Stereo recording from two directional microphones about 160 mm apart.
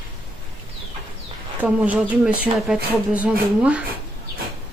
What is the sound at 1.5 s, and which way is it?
Speech, 10° right (ahead or behind).